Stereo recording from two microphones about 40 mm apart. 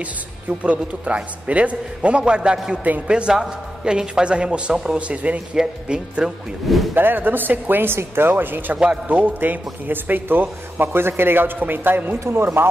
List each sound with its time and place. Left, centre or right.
0.6 s a man's voice: right
5.5 s a man's voice: centre
6.9 s speech: right
8.7 s a man's voice: right
9.1 s speech: right